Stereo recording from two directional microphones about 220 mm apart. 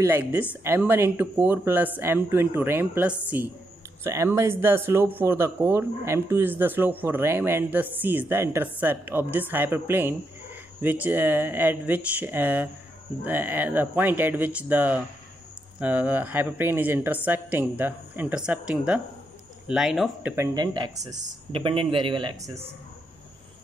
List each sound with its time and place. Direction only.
0.0 s speech: 10° right (ahead or behind)
20.5 s speech: 20° right (ahead or behind)